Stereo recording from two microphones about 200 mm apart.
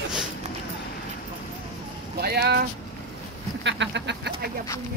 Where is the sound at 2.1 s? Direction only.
50° right (ahead or behind).